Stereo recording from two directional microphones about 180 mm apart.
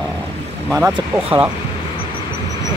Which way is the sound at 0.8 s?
10° right (ahead or behind).